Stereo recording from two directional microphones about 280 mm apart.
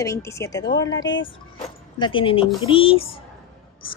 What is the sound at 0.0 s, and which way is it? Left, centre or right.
A woman's voice, centre.